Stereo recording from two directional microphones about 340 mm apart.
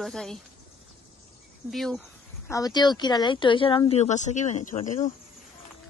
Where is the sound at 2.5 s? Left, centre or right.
Centre.